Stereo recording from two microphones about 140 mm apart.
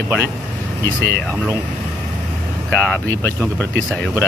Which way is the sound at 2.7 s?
10° left (ahead or behind).